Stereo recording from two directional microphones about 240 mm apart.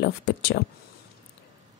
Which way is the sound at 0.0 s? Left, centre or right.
Left.